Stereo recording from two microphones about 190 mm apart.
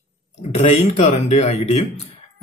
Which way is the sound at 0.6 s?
35° left (ahead or behind).